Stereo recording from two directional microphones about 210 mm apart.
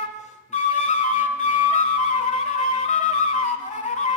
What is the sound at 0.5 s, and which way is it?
Flute, 35° left (ahead or behind).